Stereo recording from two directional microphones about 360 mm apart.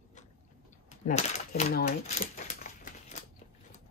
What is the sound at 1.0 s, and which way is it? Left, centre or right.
Speech, centre.